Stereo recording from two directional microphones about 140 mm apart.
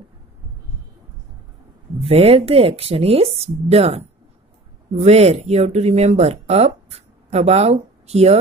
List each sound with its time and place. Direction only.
2.0 s speech: 45° right (ahead or behind)
5.0 s speech: 50° right (ahead or behind)